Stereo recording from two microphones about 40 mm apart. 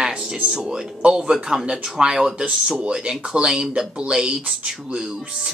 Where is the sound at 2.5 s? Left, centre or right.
Centre.